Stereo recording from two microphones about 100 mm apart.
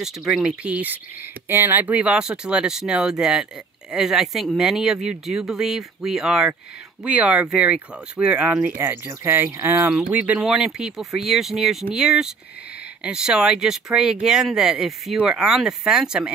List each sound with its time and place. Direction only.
0.0 s speech: 5° right (ahead or behind)